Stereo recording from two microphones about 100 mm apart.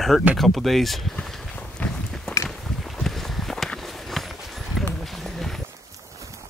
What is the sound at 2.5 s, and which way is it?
Walk, centre (ahead or behind).